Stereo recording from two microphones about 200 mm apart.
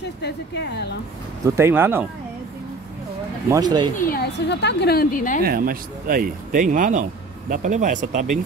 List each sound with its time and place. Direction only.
0.2 s speech: 55° left (ahead or behind)
1.4 s speech: 15° right (ahead or behind)
3.4 s speech: 20° right (ahead or behind)
4.1 s a woman's voice: 55° left (ahead or behind)
5.4 s speech: 45° right (ahead or behind)